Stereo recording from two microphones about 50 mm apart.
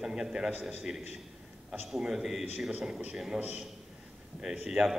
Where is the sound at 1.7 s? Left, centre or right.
Centre.